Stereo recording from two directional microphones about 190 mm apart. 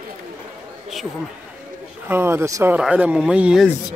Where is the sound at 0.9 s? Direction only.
Centre (ahead or behind).